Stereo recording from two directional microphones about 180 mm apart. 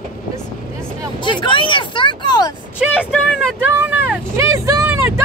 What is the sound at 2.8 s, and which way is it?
Speech, 5° right (ahead or behind).